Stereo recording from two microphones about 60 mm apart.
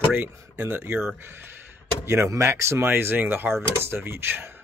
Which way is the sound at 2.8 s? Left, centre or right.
Right.